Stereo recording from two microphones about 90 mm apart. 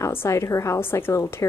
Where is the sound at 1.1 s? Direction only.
35° left (ahead or behind).